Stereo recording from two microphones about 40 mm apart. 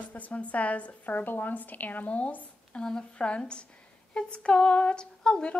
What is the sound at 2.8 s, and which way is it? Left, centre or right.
Speech, centre.